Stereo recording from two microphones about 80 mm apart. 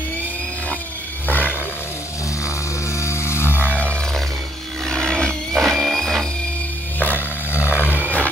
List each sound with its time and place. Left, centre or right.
1.2 s roar: left
3.0 s a sound: left
3.5 s music: right
4.8 s music: centre
7.5 s a sound: left
7.9 s music: right